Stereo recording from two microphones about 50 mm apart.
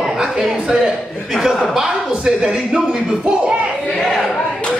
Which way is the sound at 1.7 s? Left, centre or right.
Centre.